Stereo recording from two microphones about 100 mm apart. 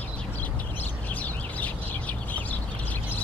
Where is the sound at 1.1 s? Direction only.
15° left (ahead or behind).